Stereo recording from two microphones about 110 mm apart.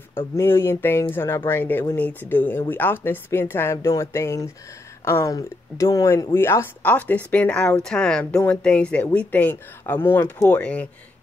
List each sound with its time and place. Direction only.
0.4 s speech: 20° left (ahead or behind)